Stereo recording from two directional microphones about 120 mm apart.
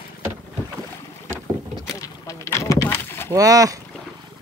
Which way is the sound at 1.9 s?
25° left (ahead or behind).